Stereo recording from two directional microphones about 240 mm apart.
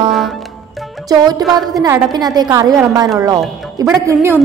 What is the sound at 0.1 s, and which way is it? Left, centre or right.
Music, centre.